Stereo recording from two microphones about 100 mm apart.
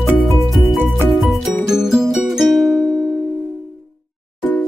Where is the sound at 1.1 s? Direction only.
Centre (ahead or behind).